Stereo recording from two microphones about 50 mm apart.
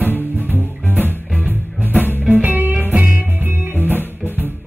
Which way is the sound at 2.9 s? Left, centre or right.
Right.